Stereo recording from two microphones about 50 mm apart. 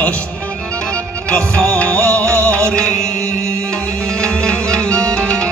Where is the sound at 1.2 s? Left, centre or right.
Left.